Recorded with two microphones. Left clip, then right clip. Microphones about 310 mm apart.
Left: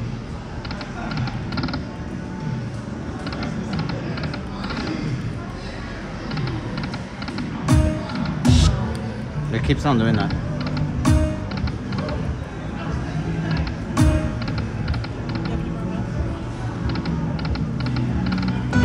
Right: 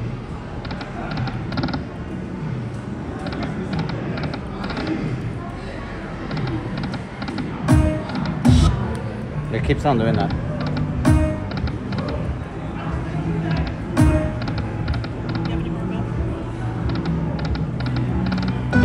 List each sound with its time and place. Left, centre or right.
1.1 s a sound: centre
3.3 s music: centre
7.3 s music: centre
9.5 s speech: centre
10.1 s music: centre
13.5 s music: centre
16.8 s typing: centre